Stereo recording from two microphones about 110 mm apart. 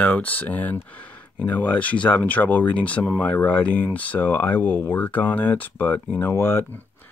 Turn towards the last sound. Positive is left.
turn(degrees=20)  # may be behind; listen again after turning